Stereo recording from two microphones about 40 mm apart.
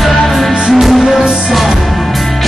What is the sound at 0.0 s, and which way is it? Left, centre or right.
Music, centre.